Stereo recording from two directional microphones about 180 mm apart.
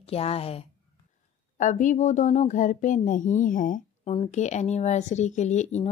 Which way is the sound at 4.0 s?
35° left (ahead or behind).